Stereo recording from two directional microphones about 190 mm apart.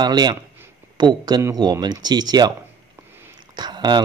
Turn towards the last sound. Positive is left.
turn(degrees=-25)  # may be behind; listen again after turning